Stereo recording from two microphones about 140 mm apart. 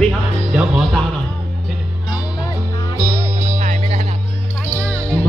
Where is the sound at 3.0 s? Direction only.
15° right (ahead or behind).